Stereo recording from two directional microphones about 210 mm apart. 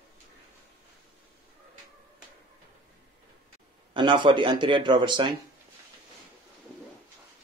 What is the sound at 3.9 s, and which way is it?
Speech, 20° right (ahead or behind).